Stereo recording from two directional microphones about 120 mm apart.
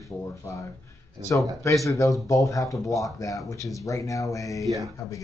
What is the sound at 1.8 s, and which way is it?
Speech, 25° left (ahead or behind).